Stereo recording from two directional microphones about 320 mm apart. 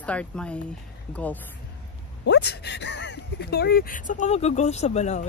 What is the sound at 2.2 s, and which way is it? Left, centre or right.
Speech, left.